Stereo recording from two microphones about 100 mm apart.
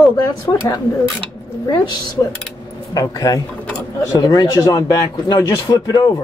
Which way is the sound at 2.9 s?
40° left (ahead or behind).